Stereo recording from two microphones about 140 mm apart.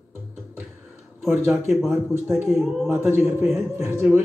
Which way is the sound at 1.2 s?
15° right (ahead or behind).